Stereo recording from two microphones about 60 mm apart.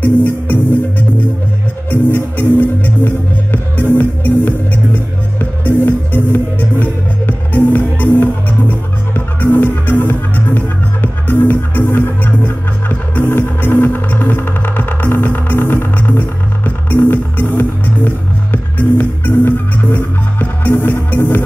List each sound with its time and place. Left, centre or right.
0.0 s music: left